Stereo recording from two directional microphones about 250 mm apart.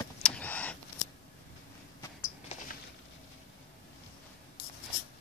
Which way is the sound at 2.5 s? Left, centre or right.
Left.